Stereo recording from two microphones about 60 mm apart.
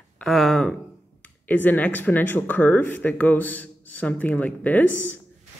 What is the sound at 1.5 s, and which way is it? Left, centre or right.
Speech, left.